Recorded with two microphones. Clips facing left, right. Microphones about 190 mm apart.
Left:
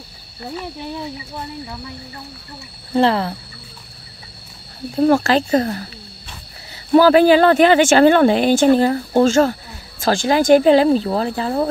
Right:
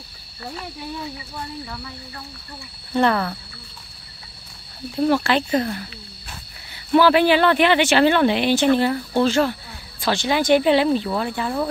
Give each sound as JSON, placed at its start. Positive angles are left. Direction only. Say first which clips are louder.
{"t": 2.9, "sound": "speech", "louder": "left 3 dB", "side_deg": 30}
{"t": 4.9, "sound": "speech", "louder": "left 4 dB", "side_deg": 45}
{"t": 6.9, "sound": "speech", "louder": "left 5 dB", "side_deg": 40}